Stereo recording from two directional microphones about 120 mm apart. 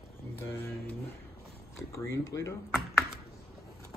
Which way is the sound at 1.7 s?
25° left (ahead or behind).